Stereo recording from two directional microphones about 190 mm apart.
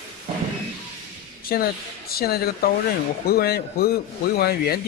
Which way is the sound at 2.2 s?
55° left (ahead or behind).